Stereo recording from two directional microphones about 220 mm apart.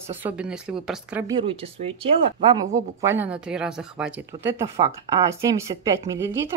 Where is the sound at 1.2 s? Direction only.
25° right (ahead or behind).